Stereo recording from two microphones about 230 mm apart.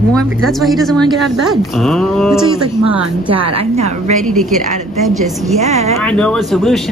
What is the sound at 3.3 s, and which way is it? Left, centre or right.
Speech, right.